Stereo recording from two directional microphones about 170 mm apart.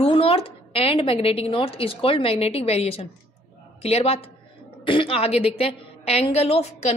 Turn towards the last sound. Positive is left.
turn(degrees=35)  # may be behind; listen again after turning